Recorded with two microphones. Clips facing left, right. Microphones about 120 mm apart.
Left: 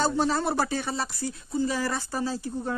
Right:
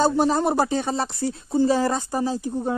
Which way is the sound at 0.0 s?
15° right (ahead or behind).